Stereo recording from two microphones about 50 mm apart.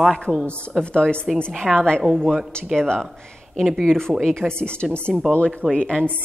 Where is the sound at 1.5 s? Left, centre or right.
Centre.